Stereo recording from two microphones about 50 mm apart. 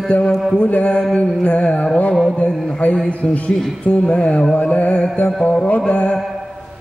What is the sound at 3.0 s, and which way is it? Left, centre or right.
Mantra, left.